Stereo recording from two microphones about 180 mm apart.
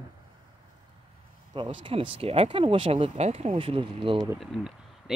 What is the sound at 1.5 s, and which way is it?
Speech, 25° right (ahead or behind).